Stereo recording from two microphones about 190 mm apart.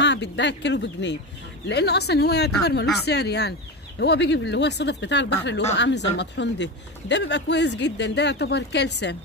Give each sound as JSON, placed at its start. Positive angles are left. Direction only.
{"t": 0.0, "sound": "speech", "side_deg": 65}